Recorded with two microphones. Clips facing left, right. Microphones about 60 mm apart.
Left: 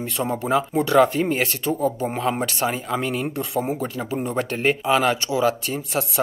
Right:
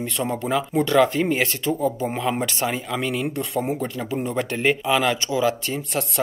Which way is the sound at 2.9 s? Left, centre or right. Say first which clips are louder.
Left 1 dB; centre.